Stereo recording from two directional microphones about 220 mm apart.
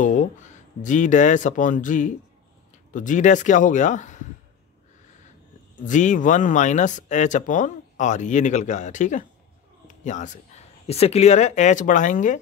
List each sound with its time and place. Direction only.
0.0 s speech: 35° left (ahead or behind)
5.9 s speech: 35° left (ahead or behind)